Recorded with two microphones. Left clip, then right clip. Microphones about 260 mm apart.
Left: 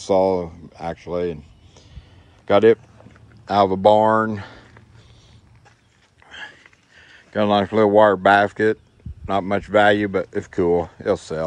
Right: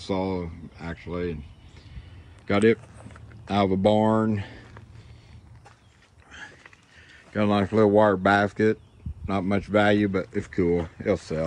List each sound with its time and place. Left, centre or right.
0.0 s speech: centre
2.4 s speech: centre
4.3 s a sound: centre
7.0 s a sound: centre
7.7 s speech: centre
9.2 s speech: centre